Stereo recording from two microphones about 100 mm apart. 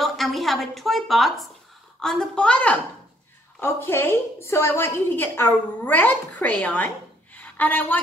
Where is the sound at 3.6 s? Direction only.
25° left (ahead or behind).